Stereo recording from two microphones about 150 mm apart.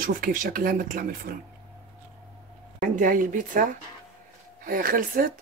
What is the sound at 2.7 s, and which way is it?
A woman's voice, 65° right (ahead or behind).